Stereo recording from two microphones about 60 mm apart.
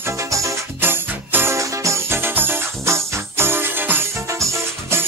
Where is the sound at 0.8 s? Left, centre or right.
Right.